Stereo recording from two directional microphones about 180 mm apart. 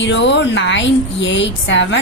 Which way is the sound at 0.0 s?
80° left.